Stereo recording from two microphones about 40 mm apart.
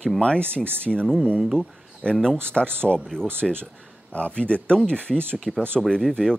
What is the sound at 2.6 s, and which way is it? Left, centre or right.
Speech, centre.